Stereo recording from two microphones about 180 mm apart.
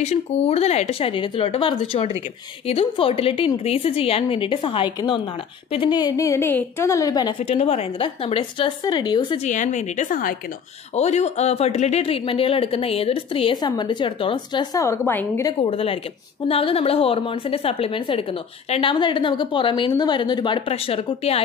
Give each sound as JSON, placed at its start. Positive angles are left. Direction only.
{"t": 0.0, "sound": "a woman's voice", "side_deg": 35}
{"t": 9.4, "sound": "a woman's voice", "side_deg": 40}
{"t": 15.6, "sound": "a woman's voice", "side_deg": 30}